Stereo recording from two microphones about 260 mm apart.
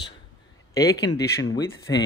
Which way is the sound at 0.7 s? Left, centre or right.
Centre.